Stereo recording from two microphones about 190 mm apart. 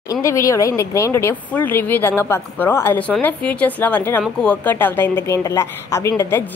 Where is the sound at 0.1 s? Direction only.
15° left (ahead or behind).